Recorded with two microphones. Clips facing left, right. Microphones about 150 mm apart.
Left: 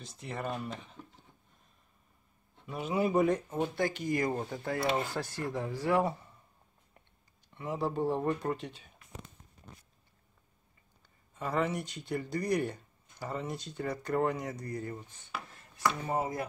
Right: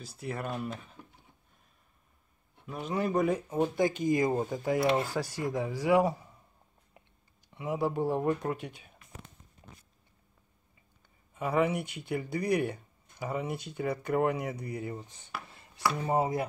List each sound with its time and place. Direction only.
0.0 s speech: 5° right (ahead or behind)
2.6 s a man's voice: 5° left (ahead or behind)
3.3 s speech: 10° right (ahead or behind)
6.0 s a man's voice: centre (ahead or behind)
7.5 s speech: 10° right (ahead or behind)
11.3 s speech: 10° right (ahead or behind)
16.1 s chopping: 20° right (ahead or behind)